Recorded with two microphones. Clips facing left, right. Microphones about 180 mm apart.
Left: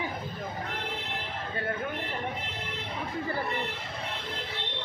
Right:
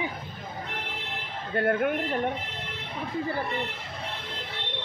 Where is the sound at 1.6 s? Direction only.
60° right (ahead or behind).